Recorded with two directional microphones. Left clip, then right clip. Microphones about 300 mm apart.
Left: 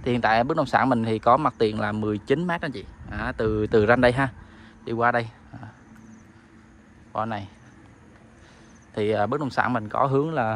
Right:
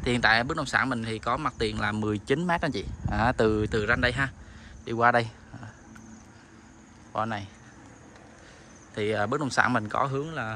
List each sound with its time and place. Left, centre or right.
0.0 s speech: centre
4.8 s speech: centre
7.1 s speech: centre
8.9 s speech: centre
10.1 s speech: centre